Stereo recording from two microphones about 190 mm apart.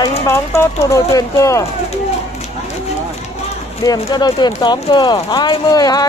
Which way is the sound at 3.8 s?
20° left (ahead or behind).